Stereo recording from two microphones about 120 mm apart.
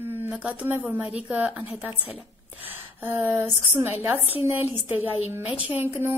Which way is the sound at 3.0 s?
15° right (ahead or behind).